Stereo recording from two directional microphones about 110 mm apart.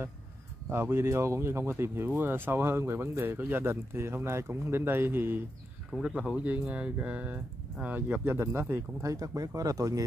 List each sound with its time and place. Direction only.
0.7 s speech: 20° right (ahead or behind)
5.9 s speech: 10° right (ahead or behind); by 10.0 s 30° right (ahead or behind)